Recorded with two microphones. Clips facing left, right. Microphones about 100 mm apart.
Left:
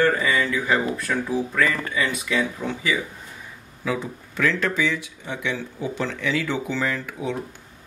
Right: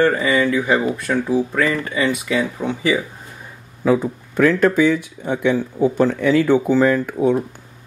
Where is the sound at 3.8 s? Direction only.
45° right (ahead or behind).